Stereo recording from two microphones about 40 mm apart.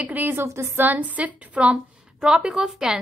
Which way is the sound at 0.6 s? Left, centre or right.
Right.